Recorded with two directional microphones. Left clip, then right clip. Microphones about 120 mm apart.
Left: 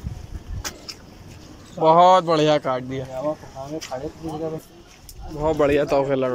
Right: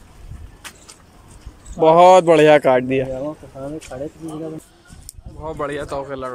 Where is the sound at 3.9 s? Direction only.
80° right.